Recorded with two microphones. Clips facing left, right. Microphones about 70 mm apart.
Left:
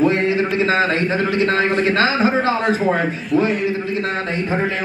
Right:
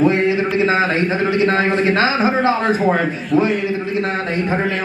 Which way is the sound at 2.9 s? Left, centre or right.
Centre.